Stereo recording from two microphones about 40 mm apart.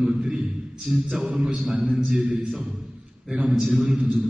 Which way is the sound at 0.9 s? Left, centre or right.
Right.